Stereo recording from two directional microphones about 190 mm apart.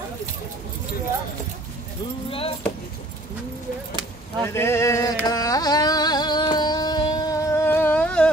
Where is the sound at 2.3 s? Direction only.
30° left (ahead or behind).